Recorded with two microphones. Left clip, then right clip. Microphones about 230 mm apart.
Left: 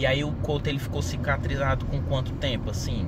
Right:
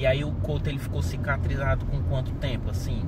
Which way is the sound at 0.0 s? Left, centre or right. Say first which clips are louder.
Even; centre.